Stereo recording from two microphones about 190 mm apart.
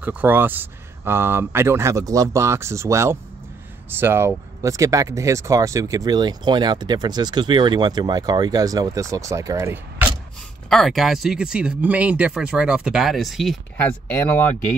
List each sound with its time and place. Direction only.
0.0 s speech: 10° right (ahead or behind)
10.7 s speech: centre (ahead or behind)